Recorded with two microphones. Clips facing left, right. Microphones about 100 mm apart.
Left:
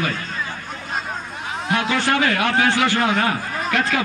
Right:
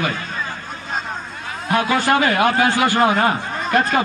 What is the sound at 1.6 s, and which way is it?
A man's voice, 45° right (ahead or behind).